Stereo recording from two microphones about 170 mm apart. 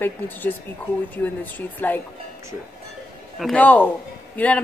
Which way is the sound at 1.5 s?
10° left (ahead or behind).